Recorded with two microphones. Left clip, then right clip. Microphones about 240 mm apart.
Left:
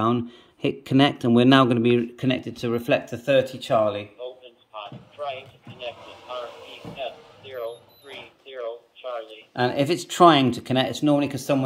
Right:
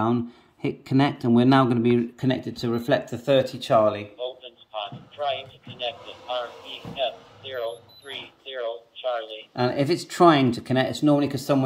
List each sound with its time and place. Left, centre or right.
0.0 s speech: centre
9.7 s speech: centre